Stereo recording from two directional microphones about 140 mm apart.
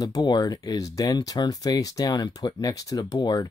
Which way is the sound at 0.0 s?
25° left (ahead or behind).